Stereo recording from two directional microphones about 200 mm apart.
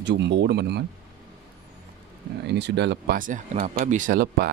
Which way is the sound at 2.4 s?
60° right (ahead or behind).